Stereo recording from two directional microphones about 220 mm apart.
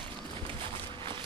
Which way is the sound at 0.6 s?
20° right (ahead or behind).